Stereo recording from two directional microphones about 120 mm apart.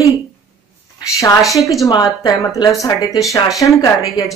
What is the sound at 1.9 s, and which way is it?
Speech, 35° left (ahead or behind).